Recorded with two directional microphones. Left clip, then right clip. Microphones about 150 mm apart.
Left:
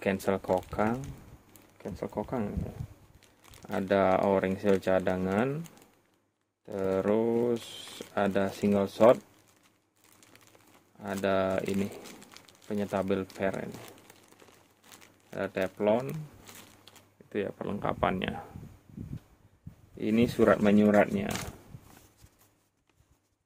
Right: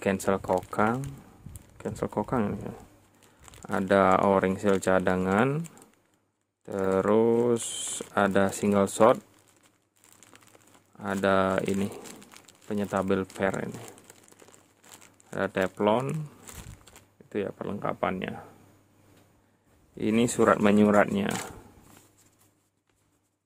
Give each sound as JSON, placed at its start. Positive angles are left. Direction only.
{"t": 0.0, "sound": "speech", "side_deg": -25}
{"t": 0.7, "sound": "speech", "side_deg": -40}
{"t": 1.8, "sound": "speech", "side_deg": -55}
{"t": 3.6, "sound": "speech", "side_deg": -35}
{"t": 6.6, "sound": "speech", "side_deg": -35}
{"t": 11.0, "sound": "speech", "side_deg": -40}
{"t": 11.9, "sound": "crumpling", "side_deg": -15}
{"t": 13.4, "sound": "speech", "side_deg": -40}
{"t": 13.7, "sound": "crumpling", "side_deg": -10}
{"t": 15.3, "sound": "speech", "side_deg": -40}
{"t": 16.8, "sound": "a sound", "side_deg": -15}
{"t": 17.8, "sound": "speech", "side_deg": 0}
{"t": 20.0, "sound": "speech", "side_deg": -30}